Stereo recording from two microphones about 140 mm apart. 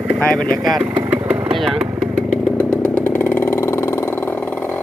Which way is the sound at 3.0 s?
15° left (ahead or behind).